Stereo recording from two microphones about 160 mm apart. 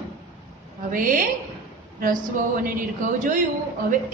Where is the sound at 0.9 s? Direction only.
60° right (ahead or behind).